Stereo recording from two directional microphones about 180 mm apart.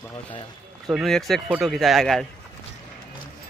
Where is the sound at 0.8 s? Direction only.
Centre (ahead or behind).